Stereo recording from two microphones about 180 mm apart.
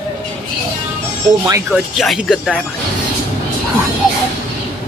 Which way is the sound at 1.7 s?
Centre (ahead or behind).